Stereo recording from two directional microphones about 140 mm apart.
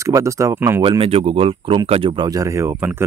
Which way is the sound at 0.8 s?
40° right (ahead or behind).